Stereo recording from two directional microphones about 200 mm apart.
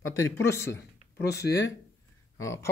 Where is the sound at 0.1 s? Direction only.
15° left (ahead or behind).